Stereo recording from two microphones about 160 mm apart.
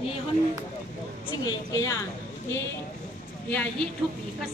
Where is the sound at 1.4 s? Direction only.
25° left (ahead or behind).